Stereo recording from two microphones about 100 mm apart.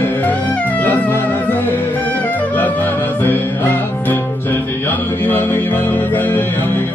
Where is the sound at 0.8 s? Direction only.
15° left (ahead or behind).